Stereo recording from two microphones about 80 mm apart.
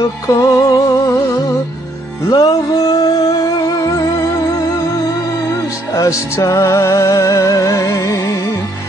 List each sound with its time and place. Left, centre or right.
0.0 s music: left
2.3 s music: left